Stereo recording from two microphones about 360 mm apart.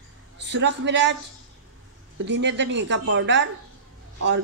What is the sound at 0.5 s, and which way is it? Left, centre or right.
Speech, right.